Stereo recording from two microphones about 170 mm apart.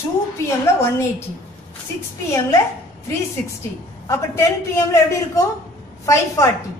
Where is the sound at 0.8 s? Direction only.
15° left (ahead or behind).